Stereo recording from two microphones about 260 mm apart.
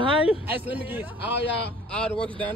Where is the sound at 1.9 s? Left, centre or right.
Centre.